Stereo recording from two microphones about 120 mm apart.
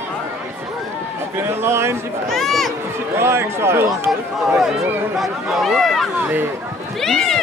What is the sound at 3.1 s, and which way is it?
Speech, 20° right (ahead or behind).